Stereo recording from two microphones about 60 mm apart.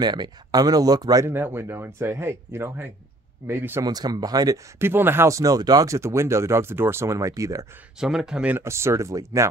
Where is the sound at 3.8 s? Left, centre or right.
Right.